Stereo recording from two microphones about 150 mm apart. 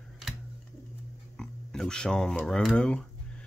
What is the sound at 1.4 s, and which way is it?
Speech, 5° left (ahead or behind).